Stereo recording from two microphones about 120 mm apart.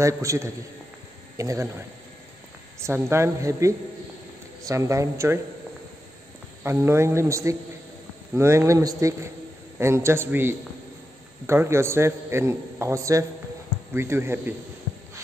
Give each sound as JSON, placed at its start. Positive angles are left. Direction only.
{"t": 0.0, "sound": "a man's voice", "side_deg": -25}
{"t": 2.8, "sound": "a man's voice", "side_deg": -20}
{"t": 6.6, "sound": "a man's voice", "side_deg": -20}